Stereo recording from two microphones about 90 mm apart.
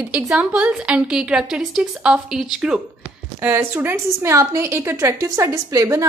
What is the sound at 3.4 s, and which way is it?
A woman's voice, 25° right (ahead or behind).